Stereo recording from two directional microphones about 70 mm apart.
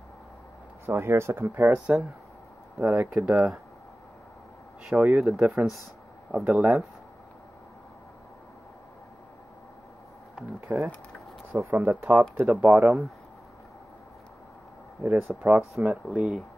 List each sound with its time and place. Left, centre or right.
0.8 s speech: right; by 3.6 s centre
4.8 s speech: centre
5.2 s speech: centre
10.7 s speech: centre
11.6 s speech: right
12.2 s speech: right
15.0 s speech: right
16.1 s speech: centre